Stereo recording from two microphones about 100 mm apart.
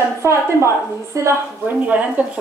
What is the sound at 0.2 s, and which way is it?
A woman's voice, 25° right (ahead or behind).